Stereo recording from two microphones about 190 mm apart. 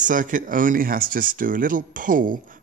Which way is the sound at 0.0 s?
45° right (ahead or behind).